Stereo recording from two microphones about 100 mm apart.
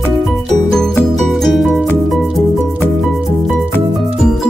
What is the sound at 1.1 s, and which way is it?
Music, centre (ahead or behind).